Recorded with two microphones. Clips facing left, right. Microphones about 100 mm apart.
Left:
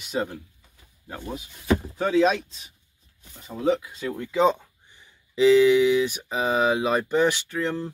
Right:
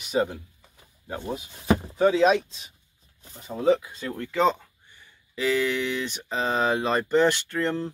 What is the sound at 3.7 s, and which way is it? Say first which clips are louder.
Speech: right 1 dB; 10° left (ahead or behind).